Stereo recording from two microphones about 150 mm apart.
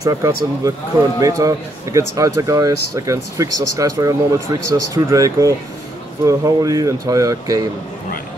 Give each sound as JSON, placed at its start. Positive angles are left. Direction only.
{"t": 0.0, "sound": "speech", "side_deg": -25}